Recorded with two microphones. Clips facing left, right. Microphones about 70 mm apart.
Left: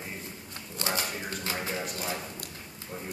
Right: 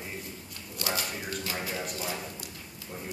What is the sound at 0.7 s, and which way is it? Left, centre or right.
Speech, left.